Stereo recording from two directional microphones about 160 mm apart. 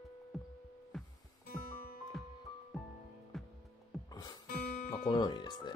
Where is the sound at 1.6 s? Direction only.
60° left (ahead or behind).